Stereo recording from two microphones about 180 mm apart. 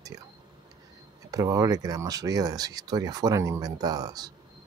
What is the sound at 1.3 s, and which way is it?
Speech, 20° right (ahead or behind).